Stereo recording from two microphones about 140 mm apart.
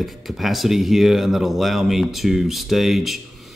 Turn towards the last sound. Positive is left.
turn(degrees=0)  # may be behind; listen again after turning